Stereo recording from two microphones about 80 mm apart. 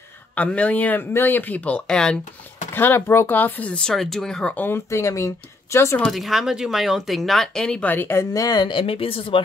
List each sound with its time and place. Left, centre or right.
0.4 s speech: centre
2.7 s speech: left; by 4.6 s centre
4.6 s speech: left
6.0 s speech: centre
7.9 s speech: left
8.3 s speech: left
9.3 s speech: left